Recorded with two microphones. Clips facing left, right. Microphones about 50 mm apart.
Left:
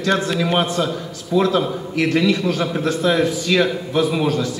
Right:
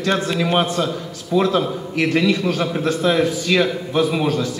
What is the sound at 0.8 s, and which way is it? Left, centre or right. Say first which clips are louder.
A man's voice: even; centre.